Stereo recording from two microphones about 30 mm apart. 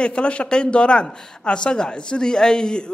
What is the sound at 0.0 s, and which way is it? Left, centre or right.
A man's voice, left.